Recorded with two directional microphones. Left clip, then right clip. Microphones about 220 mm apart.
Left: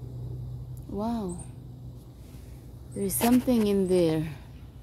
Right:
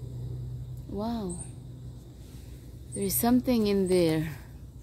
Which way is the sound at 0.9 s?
10° left (ahead or behind).